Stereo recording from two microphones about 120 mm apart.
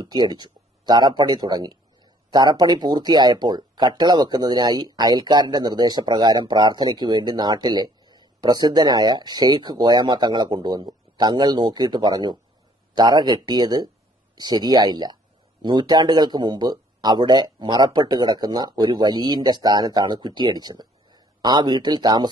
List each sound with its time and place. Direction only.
0.0 s speech: 35° right (ahead or behind)